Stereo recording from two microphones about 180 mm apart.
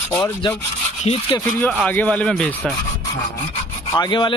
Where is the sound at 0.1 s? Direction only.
15° left (ahead or behind).